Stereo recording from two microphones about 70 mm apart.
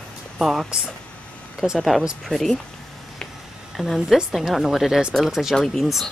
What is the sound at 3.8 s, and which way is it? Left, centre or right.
A woman's voice, centre.